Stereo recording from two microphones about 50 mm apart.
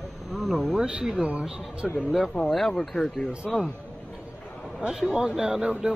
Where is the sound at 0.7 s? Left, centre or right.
Right.